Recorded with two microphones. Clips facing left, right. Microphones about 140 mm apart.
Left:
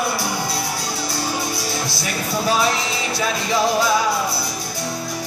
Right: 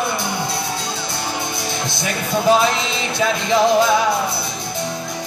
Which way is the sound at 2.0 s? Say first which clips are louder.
Right 6 dB; 20° right (ahead or behind).